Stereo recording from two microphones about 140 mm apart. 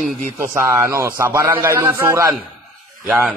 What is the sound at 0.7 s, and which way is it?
A man's voice, 20° right (ahead or behind).